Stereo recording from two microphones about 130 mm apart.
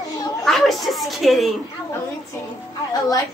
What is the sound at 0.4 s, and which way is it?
A woman's voice, centre (ahead or behind).